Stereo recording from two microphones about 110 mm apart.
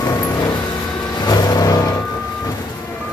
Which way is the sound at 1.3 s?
35° left (ahead or behind).